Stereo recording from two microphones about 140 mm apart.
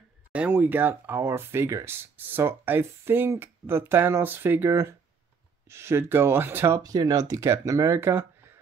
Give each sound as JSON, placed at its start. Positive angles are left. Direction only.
{"t": 0.3, "sound": "speech", "side_deg": -10}
{"t": 6.8, "sound": "speech", "side_deg": -25}